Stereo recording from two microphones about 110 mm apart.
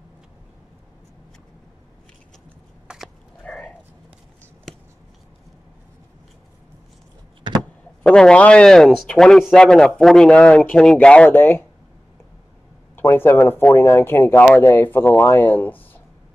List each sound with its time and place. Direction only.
2.9 s dog: 5° right (ahead or behind)
3.4 s a sound: 5° left (ahead or behind)
8.0 s a man's voice: 10° left (ahead or behind)
12.9 s speech: 20° left (ahead or behind)